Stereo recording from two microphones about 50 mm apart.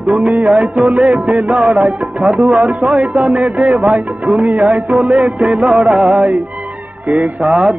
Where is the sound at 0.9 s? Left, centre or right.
Right.